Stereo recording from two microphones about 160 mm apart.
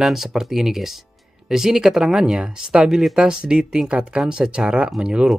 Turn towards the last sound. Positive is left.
turn(degrees=-5)  # may be behind; listen again after turning